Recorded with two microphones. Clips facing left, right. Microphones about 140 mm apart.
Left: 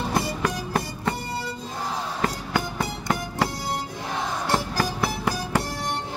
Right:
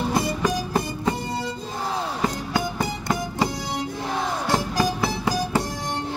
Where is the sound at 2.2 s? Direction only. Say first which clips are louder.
Even; 15° right (ahead or behind).